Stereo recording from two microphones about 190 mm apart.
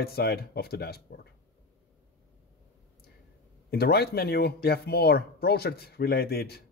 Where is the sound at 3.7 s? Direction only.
55° left (ahead or behind).